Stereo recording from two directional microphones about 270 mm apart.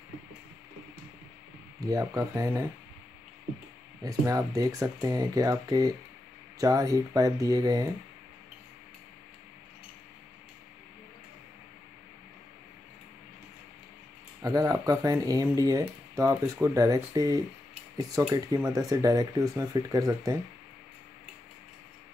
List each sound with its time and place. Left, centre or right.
1.8 s speech: centre
4.0 s speech: centre
14.4 s speech: centre